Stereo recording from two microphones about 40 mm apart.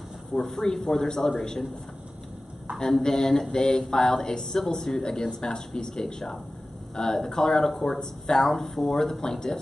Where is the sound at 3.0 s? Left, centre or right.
Centre.